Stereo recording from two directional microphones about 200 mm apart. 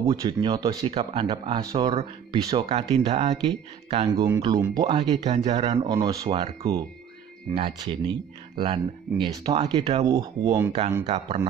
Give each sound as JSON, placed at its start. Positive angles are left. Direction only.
{"t": 0.0, "sound": "speech", "side_deg": -20}
{"t": 0.9, "sound": "speech", "side_deg": -30}
{"t": 4.2, "sound": "speech", "side_deg": -20}
{"t": 5.8, "sound": "speech", "side_deg": -20}
{"t": 6.2, "sound": "speech", "side_deg": -30}
{"t": 11.1, "sound": "speech", "side_deg": -30}